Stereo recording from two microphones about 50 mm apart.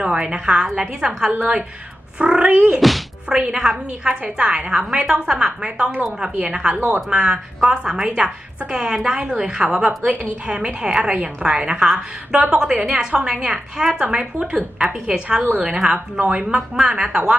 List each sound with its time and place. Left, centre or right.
0.0 s a woman's voice: centre
2.8 s speech: centre
3.3 s a woman's voice: centre
16.4 s a woman's voice: centre